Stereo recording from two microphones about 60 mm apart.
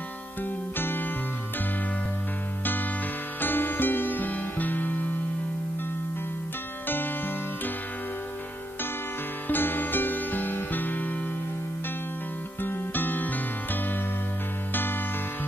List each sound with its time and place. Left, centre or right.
0.7 s music: left
3.3 s music: left
9.5 s music: left
12.6 s music: left
14.7 s music: left